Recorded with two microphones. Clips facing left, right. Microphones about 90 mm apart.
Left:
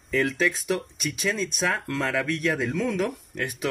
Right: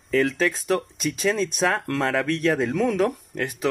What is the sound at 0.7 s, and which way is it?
Speech, 30° right (ahead or behind).